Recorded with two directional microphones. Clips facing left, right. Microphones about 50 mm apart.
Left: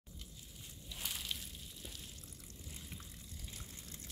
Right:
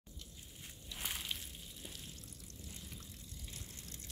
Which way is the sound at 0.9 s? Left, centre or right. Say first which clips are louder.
Right 1 dB; centre.